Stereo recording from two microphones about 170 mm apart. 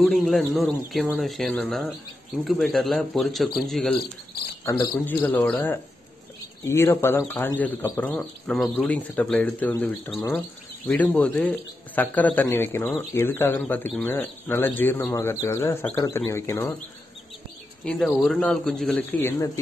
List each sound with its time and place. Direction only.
0.0 s speech: centre (ahead or behind)
4.6 s a man's voice: 15° left (ahead or behind)
17.8 s speech: centre (ahead or behind)
19.2 s a man's voice: 20° left (ahead or behind)